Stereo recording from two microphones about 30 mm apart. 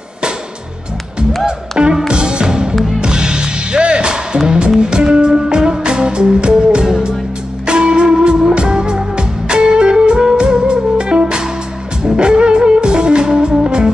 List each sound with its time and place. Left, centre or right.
1.4 s music: right